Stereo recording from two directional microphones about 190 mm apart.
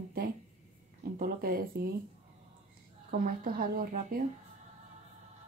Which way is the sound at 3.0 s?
45° right (ahead or behind).